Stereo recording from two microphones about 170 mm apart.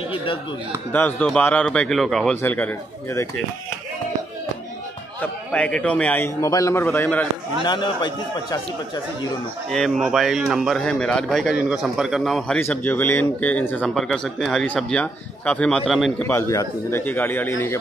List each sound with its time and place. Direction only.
0.1 s chop: 30° left (ahead or behind)
0.9 s a man's voice: 10° left (ahead or behind)
5.2 s speech: 5° left (ahead or behind)
7.6 s speech: 25° left (ahead or behind)
9.7 s a man's voice: centre (ahead or behind)